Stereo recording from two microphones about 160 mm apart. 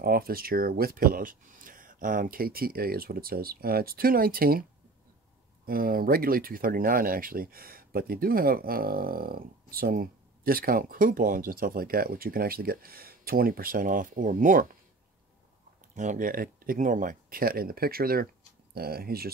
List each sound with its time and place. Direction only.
0.0 s speech: 70° right (ahead or behind)
5.7 s speech: 65° right (ahead or behind)
15.9 s speech: 50° right (ahead or behind); by 19.3 s 70° right (ahead or behind)